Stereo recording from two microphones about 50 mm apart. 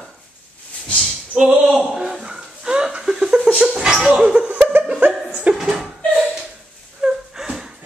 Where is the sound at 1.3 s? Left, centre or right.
Right.